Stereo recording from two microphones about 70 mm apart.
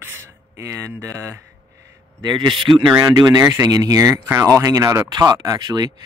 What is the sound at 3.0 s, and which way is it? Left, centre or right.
Speech, right.